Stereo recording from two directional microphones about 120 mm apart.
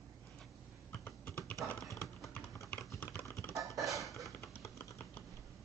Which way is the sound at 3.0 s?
20° left (ahead or behind).